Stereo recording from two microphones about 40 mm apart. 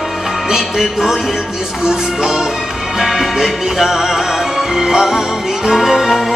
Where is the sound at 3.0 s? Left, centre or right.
Centre.